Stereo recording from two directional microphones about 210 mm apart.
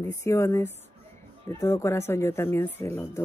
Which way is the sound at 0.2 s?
15° left (ahead or behind).